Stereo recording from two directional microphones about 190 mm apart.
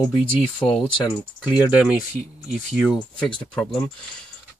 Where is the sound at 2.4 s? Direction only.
5° right (ahead or behind).